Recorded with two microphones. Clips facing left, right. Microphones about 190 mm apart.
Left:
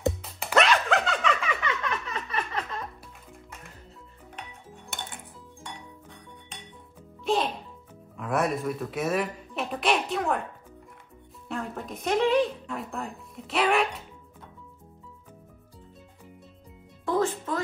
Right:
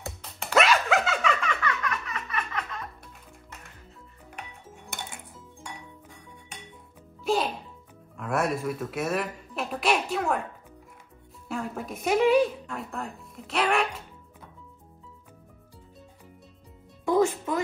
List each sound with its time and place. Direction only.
0.0 s music: centre (ahead or behind)
1.6 s a sound: 25° left (ahead or behind)
4.4 s dishes: centre (ahead or behind)
7.2 s music: centre (ahead or behind)
8.2 s speech: centre (ahead or behind)
11.4 s speech: centre (ahead or behind)
17.0 s music: 15° right (ahead or behind)